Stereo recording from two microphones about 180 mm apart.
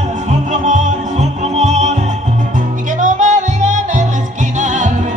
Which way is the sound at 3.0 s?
45° right (ahead or behind).